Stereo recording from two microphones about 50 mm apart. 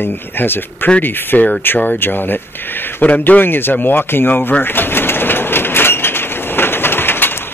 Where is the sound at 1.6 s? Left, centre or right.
Left.